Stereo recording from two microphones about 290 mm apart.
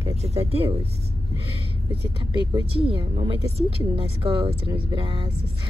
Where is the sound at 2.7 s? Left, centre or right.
Centre.